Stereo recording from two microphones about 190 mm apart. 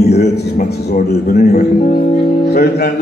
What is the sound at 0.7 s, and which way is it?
Speech, 55° left (ahead or behind).